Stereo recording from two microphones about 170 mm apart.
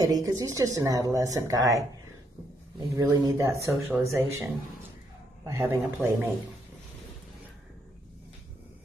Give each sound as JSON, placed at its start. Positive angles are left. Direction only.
{"t": 0.0, "sound": "a woman's voice", "side_deg": -20}